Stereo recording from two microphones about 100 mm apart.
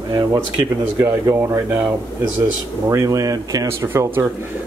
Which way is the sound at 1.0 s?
25° right (ahead or behind).